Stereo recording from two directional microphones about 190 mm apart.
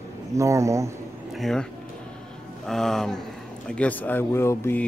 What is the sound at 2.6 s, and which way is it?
Speech, centre (ahead or behind).